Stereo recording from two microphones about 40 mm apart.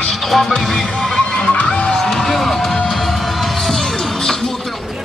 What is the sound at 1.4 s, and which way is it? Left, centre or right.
Music, left.